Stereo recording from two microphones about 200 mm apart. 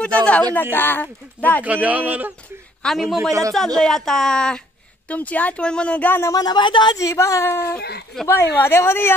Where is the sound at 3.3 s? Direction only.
15° right (ahead or behind).